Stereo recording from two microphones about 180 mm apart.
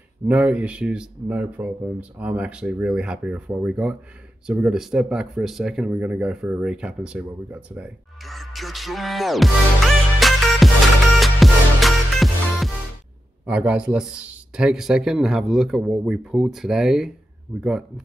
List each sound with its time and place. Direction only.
0.3 s speech: 10° right (ahead or behind)
10.2 s music: centre (ahead or behind)
13.5 s speech: 5° right (ahead or behind)